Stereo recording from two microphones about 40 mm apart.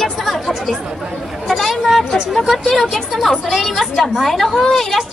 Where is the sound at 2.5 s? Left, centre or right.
Centre.